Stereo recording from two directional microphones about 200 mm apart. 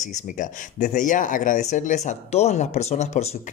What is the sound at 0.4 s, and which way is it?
Speech, 35° left (ahead or behind).